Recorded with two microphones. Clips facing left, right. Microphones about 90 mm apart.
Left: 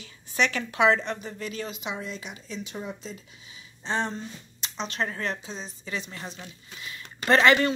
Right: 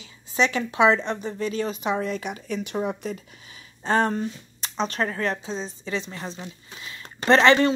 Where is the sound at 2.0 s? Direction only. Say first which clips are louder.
Right 9 dB; 55° right (ahead or behind).